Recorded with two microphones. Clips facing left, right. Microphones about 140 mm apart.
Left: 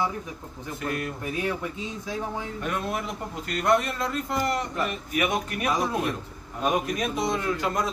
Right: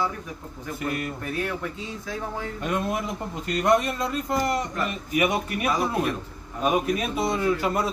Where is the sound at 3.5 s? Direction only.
20° right (ahead or behind).